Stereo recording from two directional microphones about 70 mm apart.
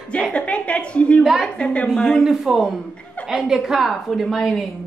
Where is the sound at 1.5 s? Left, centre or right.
Centre.